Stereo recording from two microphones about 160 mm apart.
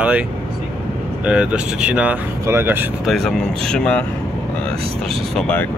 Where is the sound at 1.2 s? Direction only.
5° right (ahead or behind).